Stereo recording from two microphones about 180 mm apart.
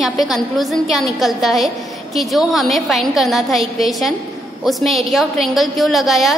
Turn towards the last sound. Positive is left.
turn(degrees=0)  # may be behind; listen again after turning